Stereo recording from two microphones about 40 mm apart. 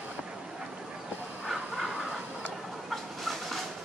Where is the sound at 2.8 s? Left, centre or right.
Centre.